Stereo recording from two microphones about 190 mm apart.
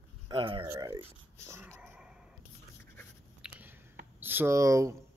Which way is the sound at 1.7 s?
10° right (ahead or behind).